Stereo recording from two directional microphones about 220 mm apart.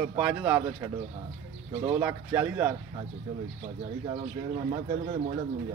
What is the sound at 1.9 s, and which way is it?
Speech, 10° right (ahead or behind).